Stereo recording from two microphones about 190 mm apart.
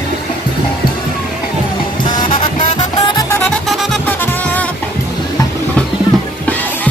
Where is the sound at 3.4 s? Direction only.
Centre (ahead or behind).